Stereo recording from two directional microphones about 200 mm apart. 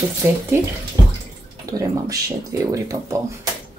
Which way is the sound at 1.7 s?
15° right (ahead or behind).